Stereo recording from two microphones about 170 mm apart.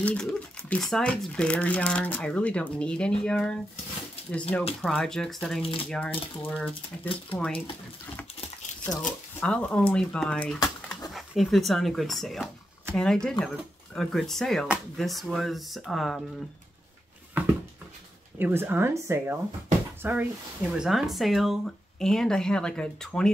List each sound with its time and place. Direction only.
0.0 s speech: 5° left (ahead or behind)
5.6 s speech: 35° left (ahead or behind)
5.9 s speech: 10° left (ahead or behind)
8.9 s speech: 5° left (ahead or behind)
18.4 s speech: 10° right (ahead or behind); by 23.3 s 5° left (ahead or behind)